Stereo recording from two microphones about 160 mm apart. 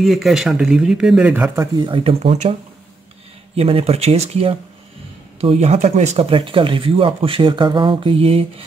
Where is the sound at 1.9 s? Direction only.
35° right (ahead or behind).